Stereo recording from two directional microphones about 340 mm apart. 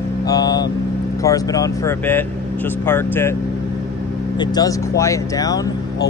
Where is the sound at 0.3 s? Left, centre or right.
Centre.